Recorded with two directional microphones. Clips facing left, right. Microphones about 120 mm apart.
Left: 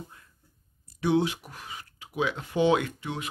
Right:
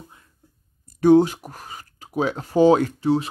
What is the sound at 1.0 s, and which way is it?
Speech, 40° right (ahead or behind).